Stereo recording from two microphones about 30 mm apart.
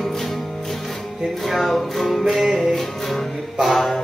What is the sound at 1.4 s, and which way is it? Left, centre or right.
Music, centre.